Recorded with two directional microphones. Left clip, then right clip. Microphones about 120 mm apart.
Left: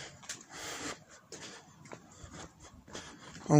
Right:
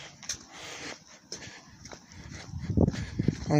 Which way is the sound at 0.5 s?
40° left (ahead or behind).